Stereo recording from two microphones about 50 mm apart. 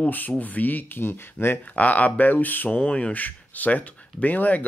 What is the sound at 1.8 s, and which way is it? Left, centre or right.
Speech, left.